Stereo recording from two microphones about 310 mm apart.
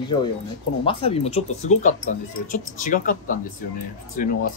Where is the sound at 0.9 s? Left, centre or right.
Centre.